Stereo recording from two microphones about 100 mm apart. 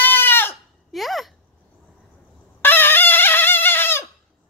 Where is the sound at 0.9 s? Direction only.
Centre (ahead or behind).